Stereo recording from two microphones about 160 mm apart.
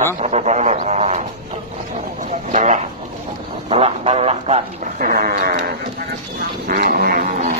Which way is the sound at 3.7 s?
40° right (ahead or behind).